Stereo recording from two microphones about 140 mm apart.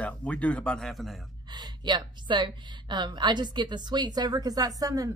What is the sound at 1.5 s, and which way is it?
A woman's voice, 30° right (ahead or behind).